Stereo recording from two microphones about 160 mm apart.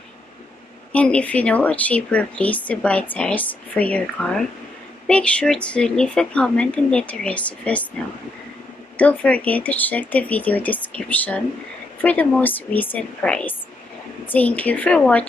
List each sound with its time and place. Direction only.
0.9 s speech: 10° left (ahead or behind)
8.9 s speech: 10° left (ahead or behind)